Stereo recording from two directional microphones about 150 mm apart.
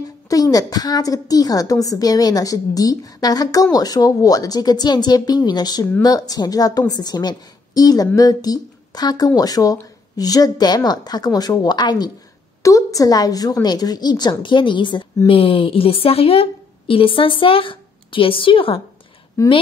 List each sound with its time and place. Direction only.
0.3 s a woman's voice: 25° left (ahead or behind)
19.4 s a woman's voice: 20° left (ahead or behind)